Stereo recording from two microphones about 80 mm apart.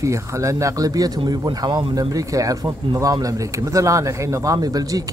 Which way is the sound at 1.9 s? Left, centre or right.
Right.